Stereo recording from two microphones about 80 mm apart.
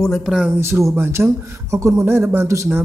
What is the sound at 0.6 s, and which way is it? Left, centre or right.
Speech, right.